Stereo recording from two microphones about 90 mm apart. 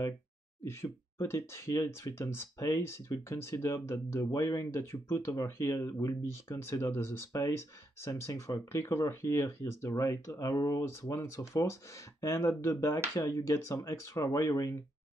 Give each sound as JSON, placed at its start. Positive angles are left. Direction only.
{"t": 1.2, "sound": "speech", "side_deg": 30}